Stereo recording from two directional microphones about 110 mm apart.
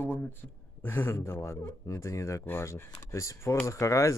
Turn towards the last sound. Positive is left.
turn(degrees=30)  # may be behind; listen again after turning